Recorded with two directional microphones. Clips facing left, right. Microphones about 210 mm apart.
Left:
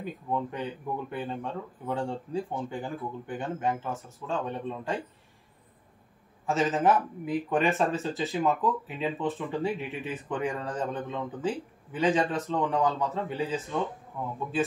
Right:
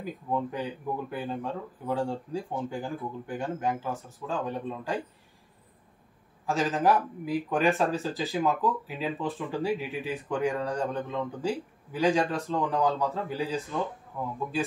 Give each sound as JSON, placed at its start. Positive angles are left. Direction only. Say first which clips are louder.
{"t": 0.0, "sound": "speech", "louder": "right 1 dB", "side_deg": 0}
{"t": 6.4, "sound": "speech", "louder": "left 1 dB", "side_deg": 0}